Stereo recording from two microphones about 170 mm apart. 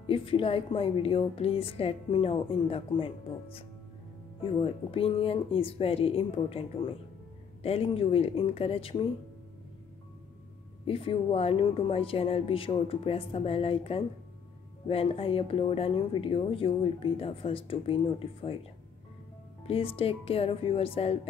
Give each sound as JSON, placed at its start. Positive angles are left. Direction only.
{"t": 0.0, "sound": "a woman's voice", "side_deg": 30}
{"t": 10.9, "sound": "a woman's voice", "side_deg": 35}
{"t": 19.7, "sound": "a woman's voice", "side_deg": 35}